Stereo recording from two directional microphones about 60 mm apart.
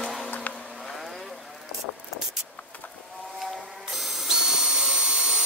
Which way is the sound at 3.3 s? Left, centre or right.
Centre.